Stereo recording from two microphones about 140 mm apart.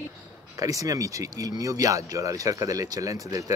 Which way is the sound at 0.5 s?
25° right (ahead or behind).